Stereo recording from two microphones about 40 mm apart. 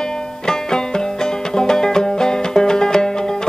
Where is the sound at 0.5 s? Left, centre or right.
Centre.